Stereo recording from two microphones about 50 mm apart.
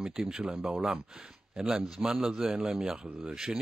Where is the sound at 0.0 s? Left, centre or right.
Centre.